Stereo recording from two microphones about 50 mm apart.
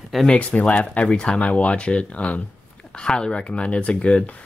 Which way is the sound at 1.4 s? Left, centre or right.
Left.